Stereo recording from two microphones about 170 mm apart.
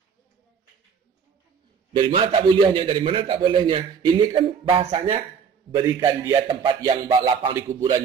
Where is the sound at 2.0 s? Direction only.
30° right (ahead or behind).